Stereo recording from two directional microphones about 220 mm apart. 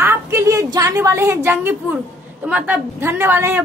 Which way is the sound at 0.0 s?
15° right (ahead or behind).